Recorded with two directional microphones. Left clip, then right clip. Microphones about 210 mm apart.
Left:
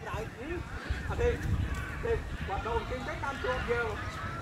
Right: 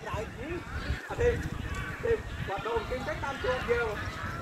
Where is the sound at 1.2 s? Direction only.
50° left (ahead or behind).